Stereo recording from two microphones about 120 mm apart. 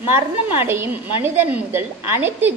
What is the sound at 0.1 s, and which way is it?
A woman's voice, 20° right (ahead or behind).